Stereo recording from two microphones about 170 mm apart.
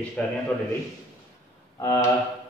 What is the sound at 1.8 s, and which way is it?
Speech, 20° left (ahead or behind).